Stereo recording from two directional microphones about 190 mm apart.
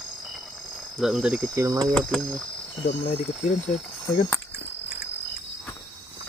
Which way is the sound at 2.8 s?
35° left (ahead or behind).